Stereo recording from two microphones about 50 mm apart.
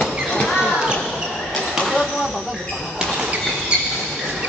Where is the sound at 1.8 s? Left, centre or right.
Centre.